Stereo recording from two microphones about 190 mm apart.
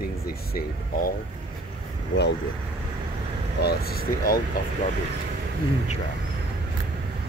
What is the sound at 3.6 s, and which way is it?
Speech, 55° left (ahead or behind).